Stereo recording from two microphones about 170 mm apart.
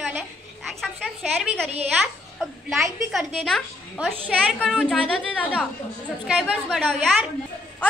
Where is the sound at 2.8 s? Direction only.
Centre (ahead or behind).